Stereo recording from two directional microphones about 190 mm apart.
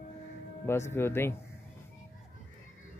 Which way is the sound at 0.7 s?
15° left (ahead or behind).